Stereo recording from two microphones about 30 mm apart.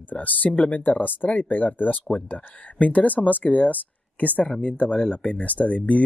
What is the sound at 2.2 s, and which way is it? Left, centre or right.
Speech, left.